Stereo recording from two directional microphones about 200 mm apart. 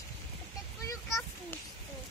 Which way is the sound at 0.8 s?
15° left (ahead or behind).